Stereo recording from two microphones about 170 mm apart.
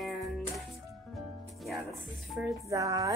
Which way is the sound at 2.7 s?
20° right (ahead or behind).